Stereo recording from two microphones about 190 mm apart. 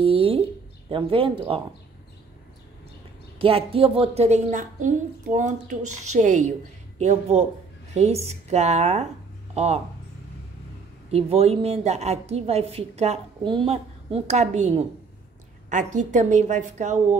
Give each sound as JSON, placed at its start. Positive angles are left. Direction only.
{"t": 0.0, "sound": "a sound", "side_deg": -30}
{"t": 3.3, "sound": "a woman's voice", "side_deg": -30}
{"t": 11.1, "sound": "a woman's voice", "side_deg": -30}